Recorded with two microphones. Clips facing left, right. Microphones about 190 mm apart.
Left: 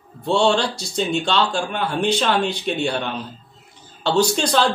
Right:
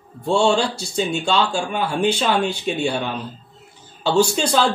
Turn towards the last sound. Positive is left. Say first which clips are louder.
# even
turn(degrees=-5)  # may be behind; listen again after turning